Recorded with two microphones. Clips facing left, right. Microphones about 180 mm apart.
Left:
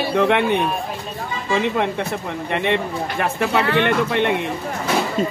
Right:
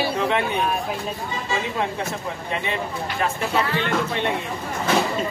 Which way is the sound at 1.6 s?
65° left (ahead or behind).